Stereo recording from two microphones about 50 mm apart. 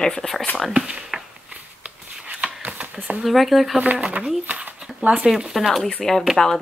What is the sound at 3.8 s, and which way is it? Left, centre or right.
Speech, right.